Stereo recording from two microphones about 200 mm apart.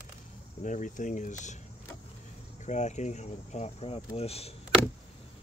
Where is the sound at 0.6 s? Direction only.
40° left (ahead or behind).